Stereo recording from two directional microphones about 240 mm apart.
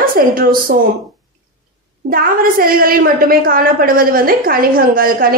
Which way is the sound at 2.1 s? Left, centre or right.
Right.